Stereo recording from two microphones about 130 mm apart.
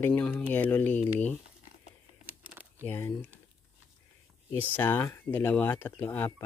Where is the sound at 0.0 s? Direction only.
15° left (ahead or behind).